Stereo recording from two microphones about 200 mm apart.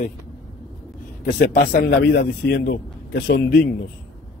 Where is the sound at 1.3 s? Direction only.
50° left (ahead or behind).